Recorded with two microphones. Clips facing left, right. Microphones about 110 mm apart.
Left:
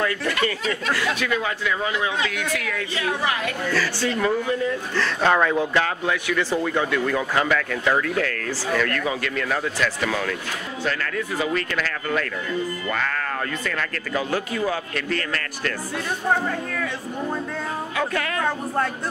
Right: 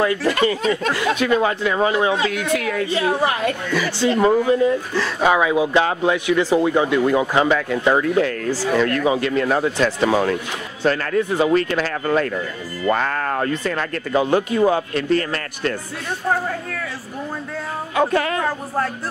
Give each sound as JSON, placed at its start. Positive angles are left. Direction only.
{"t": 0.0, "sound": "speech", "side_deg": -25}
{"t": 3.7, "sound": "speech", "side_deg": -15}
{"t": 4.2, "sound": "speech", "side_deg": -30}
{"t": 4.9, "sound": "speech", "side_deg": -10}
{"t": 5.7, "sound": "speech", "side_deg": -20}
{"t": 17.9, "sound": "speech", "side_deg": -30}